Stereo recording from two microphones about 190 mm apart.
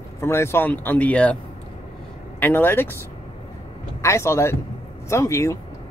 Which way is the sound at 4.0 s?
15° left (ahead or behind).